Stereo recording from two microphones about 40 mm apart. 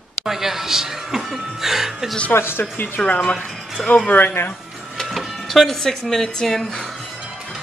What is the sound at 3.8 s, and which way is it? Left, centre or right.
Speech, centre.